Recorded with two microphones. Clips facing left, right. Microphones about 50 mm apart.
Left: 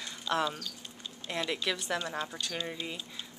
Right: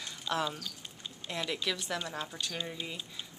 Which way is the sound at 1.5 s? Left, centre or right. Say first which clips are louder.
Left 1 dB; centre.